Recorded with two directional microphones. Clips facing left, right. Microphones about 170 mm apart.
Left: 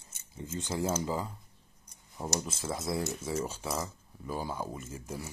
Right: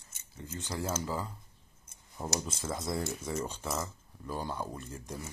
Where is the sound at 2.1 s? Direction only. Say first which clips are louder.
Left 1 dB; centre (ahead or behind).